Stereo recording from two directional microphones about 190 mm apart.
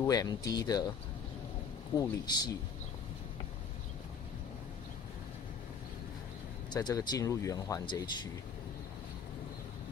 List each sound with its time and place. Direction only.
0.0 s speech: 20° left (ahead or behind)
2.0 s speech: 20° left (ahead or behind)
6.7 s speech: 20° left (ahead or behind)